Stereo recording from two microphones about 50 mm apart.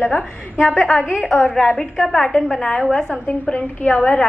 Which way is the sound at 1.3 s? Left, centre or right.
Centre.